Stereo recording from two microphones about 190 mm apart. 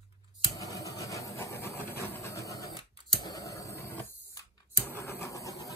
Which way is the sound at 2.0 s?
15° left (ahead or behind).